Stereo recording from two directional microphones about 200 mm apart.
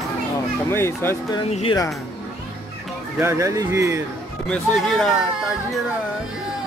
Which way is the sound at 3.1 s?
15° right (ahead or behind).